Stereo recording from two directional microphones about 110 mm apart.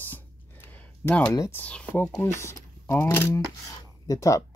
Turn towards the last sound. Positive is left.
turn(degrees=30)  # may be behind; listen again after turning